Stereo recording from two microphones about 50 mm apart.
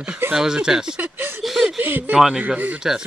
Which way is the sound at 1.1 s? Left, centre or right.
Right.